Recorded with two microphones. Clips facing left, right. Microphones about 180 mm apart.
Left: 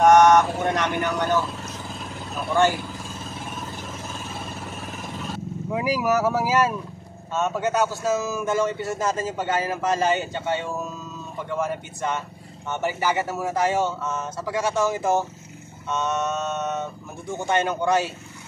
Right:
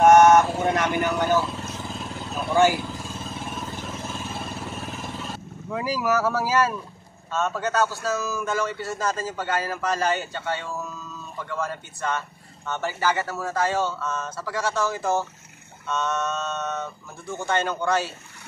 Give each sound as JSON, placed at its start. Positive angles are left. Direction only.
{"t": 0.0, "sound": "vehicle", "side_deg": -5}
{"t": 2.3, "sound": "speech", "side_deg": -5}
{"t": 5.7, "sound": "speech", "side_deg": 15}